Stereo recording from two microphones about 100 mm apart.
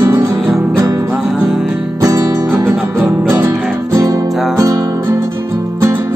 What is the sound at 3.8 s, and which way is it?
Music, 35° right (ahead or behind).